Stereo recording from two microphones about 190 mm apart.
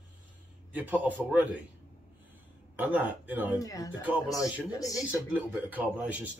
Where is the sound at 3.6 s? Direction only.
20° left (ahead or behind).